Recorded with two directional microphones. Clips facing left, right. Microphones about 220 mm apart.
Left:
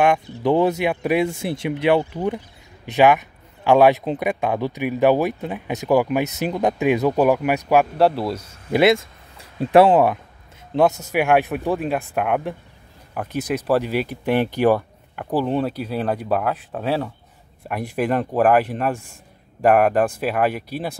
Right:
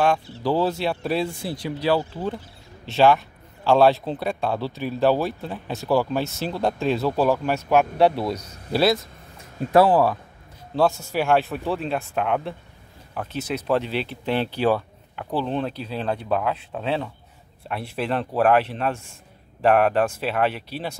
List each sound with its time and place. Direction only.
0.0 s speech: 20° left (ahead or behind); by 8.4 s 5° left (ahead or behind)
9.8 s speech: 25° left (ahead or behind)